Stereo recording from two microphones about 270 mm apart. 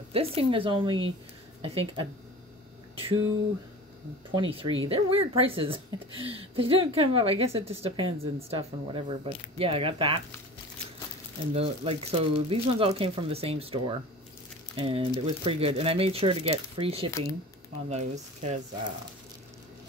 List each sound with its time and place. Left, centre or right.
0.1 s speech: right
4.4 s speech: centre
11.5 s speech: right